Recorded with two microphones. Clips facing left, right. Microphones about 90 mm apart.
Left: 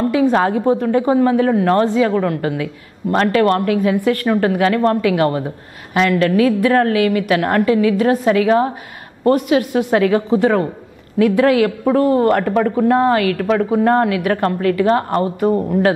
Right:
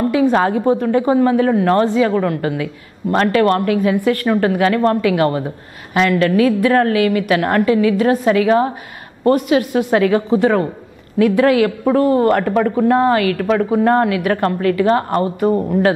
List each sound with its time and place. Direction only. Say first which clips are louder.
0.0 s a woman's voice: even; 15° right (ahead or behind)